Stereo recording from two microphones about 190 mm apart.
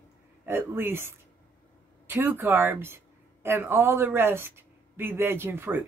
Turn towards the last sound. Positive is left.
turn(degrees=-10)  # may be behind; listen again after turning